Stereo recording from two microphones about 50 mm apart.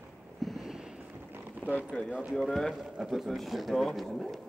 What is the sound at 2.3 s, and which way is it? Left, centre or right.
Speech, centre.